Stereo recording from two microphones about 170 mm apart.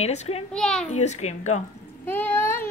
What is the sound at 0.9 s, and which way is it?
Speech, 40° left (ahead or behind).